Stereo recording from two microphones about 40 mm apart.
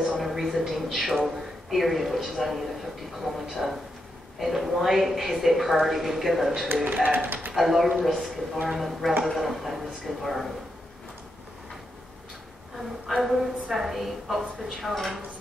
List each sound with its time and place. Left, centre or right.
0.0 s a sound: centre
0.8 s a woman's voice: centre
6.8 s speech: right
7.5 s a woman's voice: centre
13.1 s a woman's voice: centre